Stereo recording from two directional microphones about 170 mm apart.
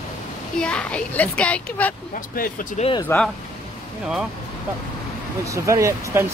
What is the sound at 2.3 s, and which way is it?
Speech, 55° left (ahead or behind).